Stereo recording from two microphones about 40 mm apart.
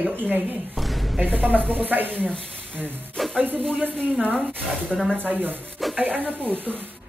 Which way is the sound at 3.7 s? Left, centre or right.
Right.